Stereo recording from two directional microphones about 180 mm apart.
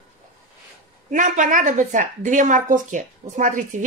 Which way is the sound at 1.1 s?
45° right (ahead or behind).